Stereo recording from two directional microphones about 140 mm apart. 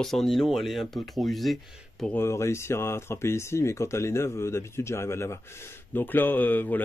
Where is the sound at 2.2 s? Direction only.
20° left (ahead or behind).